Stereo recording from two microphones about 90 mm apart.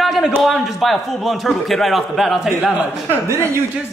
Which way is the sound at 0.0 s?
Centre (ahead or behind).